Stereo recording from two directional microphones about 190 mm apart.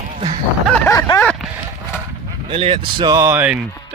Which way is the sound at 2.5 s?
30° right (ahead or behind).